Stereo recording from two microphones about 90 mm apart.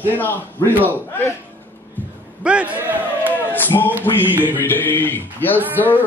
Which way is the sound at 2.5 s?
15° right (ahead or behind).